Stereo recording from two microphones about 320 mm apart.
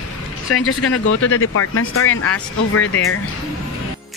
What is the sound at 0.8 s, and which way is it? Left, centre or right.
Speech, left.